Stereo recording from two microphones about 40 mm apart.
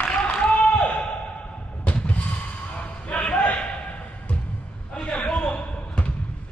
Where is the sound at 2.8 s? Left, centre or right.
Left.